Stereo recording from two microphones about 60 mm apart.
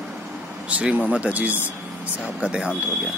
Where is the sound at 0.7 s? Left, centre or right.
Right.